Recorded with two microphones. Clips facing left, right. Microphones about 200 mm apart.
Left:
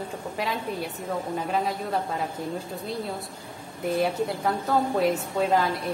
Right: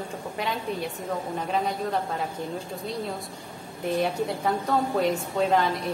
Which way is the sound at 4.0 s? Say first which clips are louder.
Left 1 dB; centre (ahead or behind).